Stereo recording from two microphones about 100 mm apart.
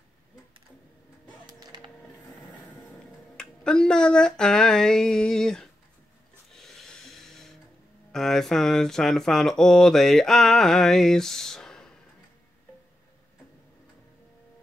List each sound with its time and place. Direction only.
1.6 s music: 45° right (ahead or behind)
3.3 s a sound: 5° left (ahead or behind)
8.1 s speech: 5° left (ahead or behind)